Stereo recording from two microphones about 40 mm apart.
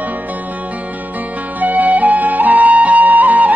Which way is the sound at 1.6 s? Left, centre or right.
Right.